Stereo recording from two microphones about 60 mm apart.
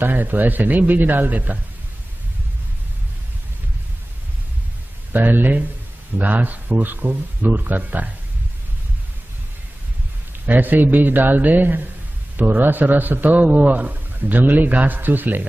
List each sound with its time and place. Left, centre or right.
0.0 s a man's voice: right
5.1 s a man's voice: right
10.4 s a man's voice: right